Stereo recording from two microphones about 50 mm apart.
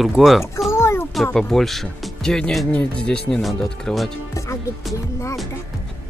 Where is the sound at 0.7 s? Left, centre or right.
Left.